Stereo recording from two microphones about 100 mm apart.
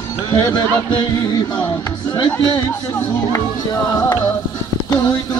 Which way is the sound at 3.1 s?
30° left (ahead or behind).